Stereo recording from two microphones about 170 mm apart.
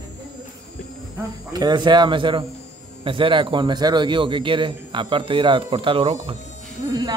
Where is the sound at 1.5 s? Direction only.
25° right (ahead or behind).